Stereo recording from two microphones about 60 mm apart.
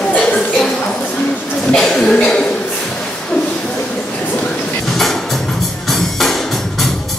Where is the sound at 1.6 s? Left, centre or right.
Centre.